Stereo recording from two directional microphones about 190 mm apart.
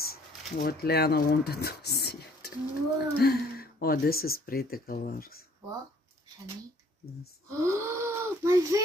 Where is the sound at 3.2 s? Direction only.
55° left (ahead or behind).